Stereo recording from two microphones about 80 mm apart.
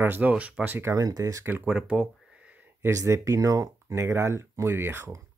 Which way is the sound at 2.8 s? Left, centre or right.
Right.